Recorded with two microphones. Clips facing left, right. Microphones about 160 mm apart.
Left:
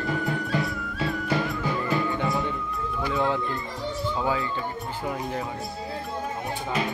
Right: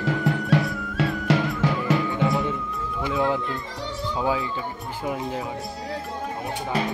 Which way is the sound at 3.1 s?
10° right (ahead or behind).